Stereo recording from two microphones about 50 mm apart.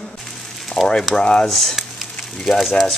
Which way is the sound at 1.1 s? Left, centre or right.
Centre.